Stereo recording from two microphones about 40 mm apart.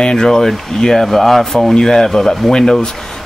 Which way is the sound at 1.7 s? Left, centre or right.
Centre.